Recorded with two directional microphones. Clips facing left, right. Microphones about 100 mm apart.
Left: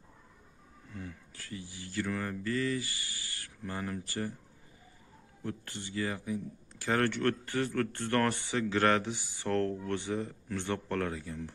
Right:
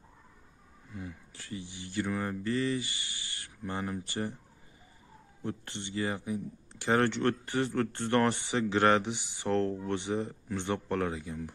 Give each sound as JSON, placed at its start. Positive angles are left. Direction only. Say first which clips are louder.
{"t": 0.9, "sound": "speech", "louder": "right 2 dB", "side_deg": -15}
{"t": 5.4, "sound": "speech", "louder": "right 2 dB", "side_deg": -25}